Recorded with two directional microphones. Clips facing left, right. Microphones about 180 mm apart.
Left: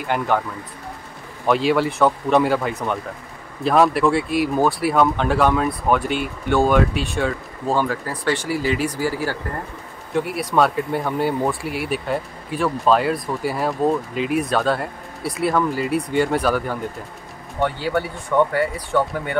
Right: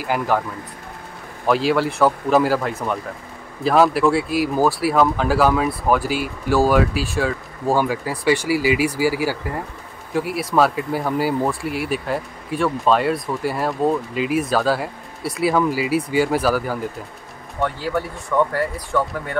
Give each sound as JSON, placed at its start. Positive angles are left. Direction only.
{"t": 0.0, "sound": "speech", "side_deg": -5}
{"t": 1.4, "sound": "speech", "side_deg": 0}
{"t": 18.3, "sound": "speech", "side_deg": 15}
{"t": 18.9, "sound": "speech", "side_deg": 5}